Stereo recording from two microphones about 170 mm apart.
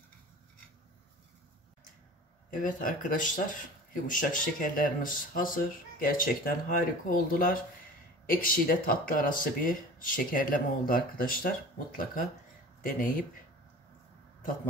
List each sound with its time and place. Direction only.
2.5 s speech: 50° left (ahead or behind)
12.8 s speech: 55° left (ahead or behind)